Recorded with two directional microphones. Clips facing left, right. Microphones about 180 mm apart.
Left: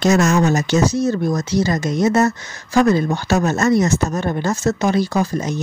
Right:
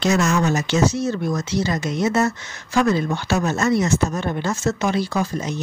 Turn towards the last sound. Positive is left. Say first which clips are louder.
# left 4 dB
turn(degrees=45)  # may be behind; listen again after turning